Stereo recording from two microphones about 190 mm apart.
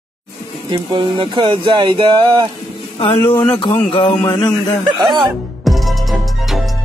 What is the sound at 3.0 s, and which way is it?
A man's voice, 30° left (ahead or behind).